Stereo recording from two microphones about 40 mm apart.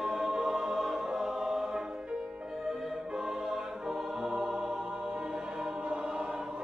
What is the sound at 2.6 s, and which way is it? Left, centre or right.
Music, centre.